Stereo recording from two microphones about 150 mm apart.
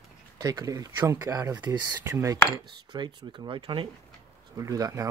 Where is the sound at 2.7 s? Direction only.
30° right (ahead or behind).